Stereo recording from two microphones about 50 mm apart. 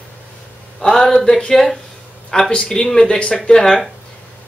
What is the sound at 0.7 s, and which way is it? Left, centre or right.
Speech, centre.